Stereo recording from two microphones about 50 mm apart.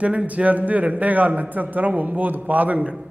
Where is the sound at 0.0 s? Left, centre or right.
Right.